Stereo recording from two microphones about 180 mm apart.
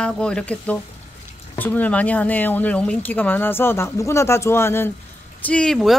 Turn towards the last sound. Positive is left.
turn(degrees=0)  # may be behind; listen again after turning